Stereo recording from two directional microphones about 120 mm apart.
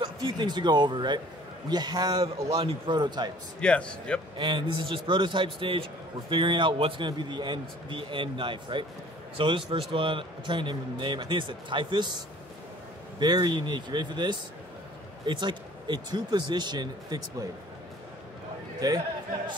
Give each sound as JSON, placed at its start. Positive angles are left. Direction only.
{"t": 0.0, "sound": "a man's voice", "side_deg": -35}
{"t": 3.6, "sound": "speech", "side_deg": 10}
{"t": 4.4, "sound": "a man's voice", "side_deg": -45}
{"t": 13.2, "sound": "a man's voice", "side_deg": -35}
{"t": 18.8, "sound": "a man's voice", "side_deg": -35}